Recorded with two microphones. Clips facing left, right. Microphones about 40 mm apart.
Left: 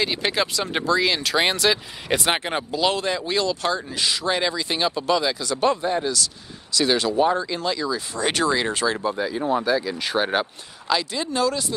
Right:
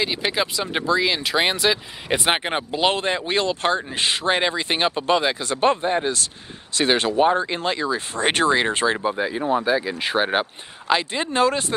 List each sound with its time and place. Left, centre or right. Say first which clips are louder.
0.0 s speech: even; centre
2.2 s speech: right 2 dB; right
10.9 s speech: right 2 dB; right